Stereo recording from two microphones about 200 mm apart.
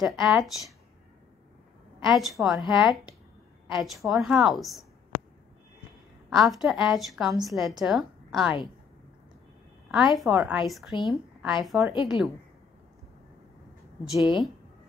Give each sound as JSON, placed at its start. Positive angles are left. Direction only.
{"t": 0.0, "sound": "a woman's voice", "side_deg": -5}
{"t": 2.0, "sound": "a woman's voice", "side_deg": 0}
{"t": 6.3, "sound": "a woman's voice", "side_deg": 0}
{"t": 9.8, "sound": "a woman's voice", "side_deg": -5}
{"t": 11.9, "sound": "speech", "side_deg": 25}